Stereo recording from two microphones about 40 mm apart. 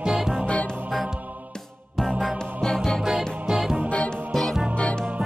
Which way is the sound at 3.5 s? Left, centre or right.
Centre.